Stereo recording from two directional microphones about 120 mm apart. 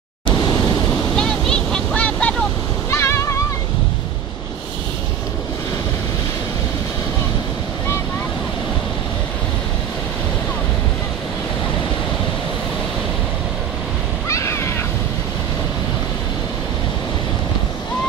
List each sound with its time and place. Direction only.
0.3 s vehicle: 35° left (ahead or behind)
1.1 s waves: 5° left (ahead or behind)
2.9 s music: 25° left (ahead or behind)
14.3 s a sound: 25° left (ahead or behind)